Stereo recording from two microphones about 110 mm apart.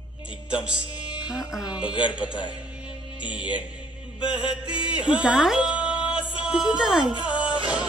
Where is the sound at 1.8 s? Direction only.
45° left (ahead or behind).